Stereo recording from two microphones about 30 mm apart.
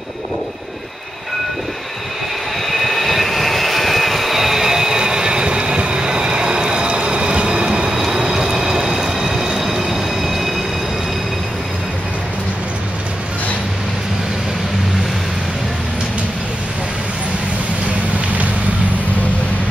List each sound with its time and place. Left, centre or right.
2.7 s vehicle: centre; by 8.0 s right
8.1 s train: centre